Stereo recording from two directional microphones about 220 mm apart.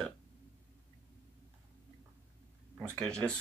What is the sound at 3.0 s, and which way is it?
Speech, 5° left (ahead or behind).